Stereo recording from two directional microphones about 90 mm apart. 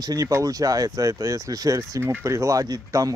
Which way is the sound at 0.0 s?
40° right (ahead or behind).